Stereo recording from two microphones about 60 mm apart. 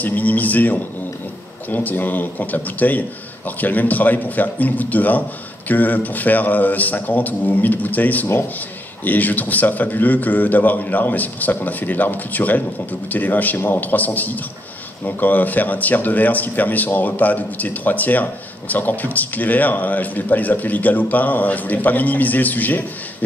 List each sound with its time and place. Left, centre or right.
0.0 s speech: left